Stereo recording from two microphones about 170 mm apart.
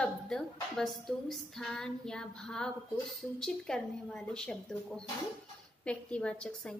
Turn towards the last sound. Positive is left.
turn(degrees=5)  # may be behind; listen again after turning